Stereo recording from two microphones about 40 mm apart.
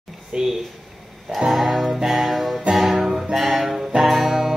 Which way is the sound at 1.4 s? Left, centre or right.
Centre.